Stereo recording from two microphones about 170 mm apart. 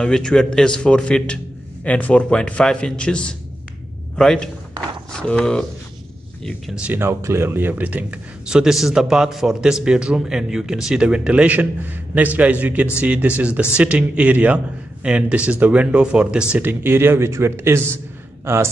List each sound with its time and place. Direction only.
0.0 s speech: 5° left (ahead or behind); by 18.7 s 15° right (ahead or behind)